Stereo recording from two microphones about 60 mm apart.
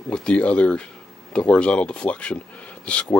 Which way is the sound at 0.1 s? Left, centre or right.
Centre.